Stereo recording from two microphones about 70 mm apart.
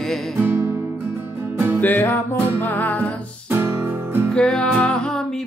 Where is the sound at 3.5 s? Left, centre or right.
Right.